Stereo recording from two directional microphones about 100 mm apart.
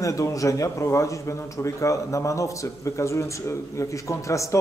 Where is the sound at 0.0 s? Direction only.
35° left (ahead or behind).